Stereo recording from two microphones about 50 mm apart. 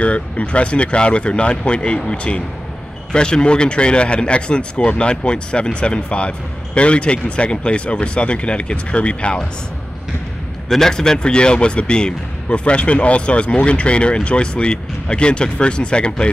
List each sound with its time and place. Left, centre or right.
0.0 s speech: left
10.7 s speech: centre